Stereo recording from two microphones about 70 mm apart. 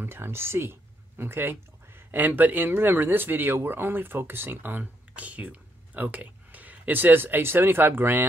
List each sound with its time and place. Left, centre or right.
0.0 s speech: right